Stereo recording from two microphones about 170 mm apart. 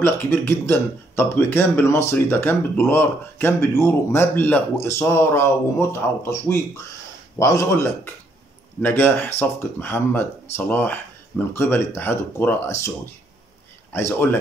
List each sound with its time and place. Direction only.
0.0 s speech: 10° left (ahead or behind)
13.9 s speech: 15° left (ahead or behind)